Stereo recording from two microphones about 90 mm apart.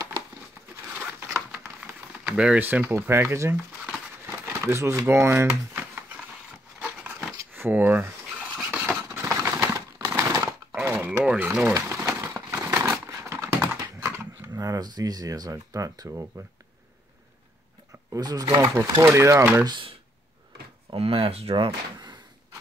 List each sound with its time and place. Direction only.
0.9 s a sound: 25° right (ahead or behind)
2.2 s crumpling: 10° right (ahead or behind)
4.7 s speech: 30° right (ahead or behind)
5.8 s a sound: 20° right (ahead or behind)
7.5 s speech: 20° right (ahead or behind)
8.5 s a sound: 10° right (ahead or behind)
9.1 s typewriter: 30° right (ahead or behind)
11.2 s speech: 20° right (ahead or behind)
11.7 s crumpling: 35° right (ahead or behind)
14.5 s speech: 40° right (ahead or behind)
18.1 s speech: 45° right (ahead or behind)
20.9 s speech: 90° right
21.9 s a sound: 55° right (ahead or behind)